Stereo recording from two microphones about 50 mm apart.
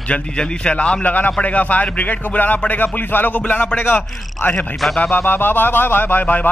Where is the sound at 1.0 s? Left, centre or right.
Left.